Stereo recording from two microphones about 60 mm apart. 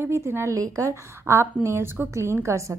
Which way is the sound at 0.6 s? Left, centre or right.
Right.